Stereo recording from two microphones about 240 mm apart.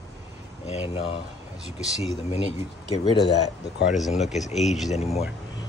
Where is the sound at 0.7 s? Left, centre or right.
Left.